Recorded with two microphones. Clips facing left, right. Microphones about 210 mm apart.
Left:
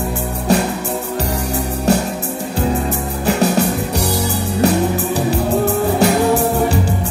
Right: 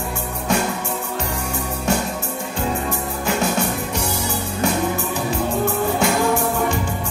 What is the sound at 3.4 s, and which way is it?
Music, 35° left (ahead or behind).